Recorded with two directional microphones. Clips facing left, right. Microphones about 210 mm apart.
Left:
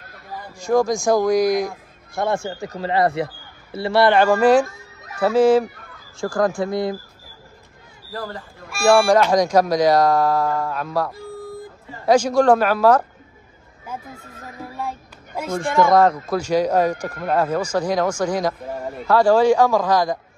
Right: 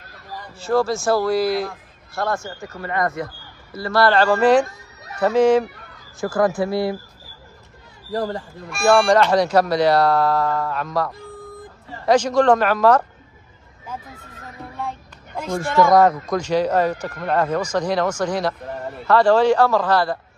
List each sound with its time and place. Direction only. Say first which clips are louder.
0.6 s speech: left 1 dB; 15° left (ahead or behind)
2.7 s speech: left 4 dB; 30° left (ahead or behind); by 5.7 s 5° left (ahead or behind)
6.1 s speech: right 1 dB; 5° right (ahead or behind)
6.6 s speech: right 1 dB; 20° left (ahead or behind)
8.1 s speech: right 7 dB; 30° right (ahead or behind)
8.8 s speech: left 1 dB; 10° left (ahead or behind)
14.6 s child singing: left 1 dB; 5° left (ahead or behind)
16.0 s speech: right 1 dB; centre (ahead or behind)